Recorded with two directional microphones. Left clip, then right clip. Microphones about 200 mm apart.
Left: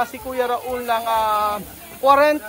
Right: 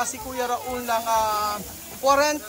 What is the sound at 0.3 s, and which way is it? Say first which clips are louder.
Speech: left 5 dB; 15° right (ahead or behind).